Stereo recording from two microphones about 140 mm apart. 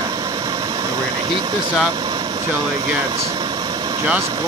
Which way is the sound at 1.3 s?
35° right (ahead or behind).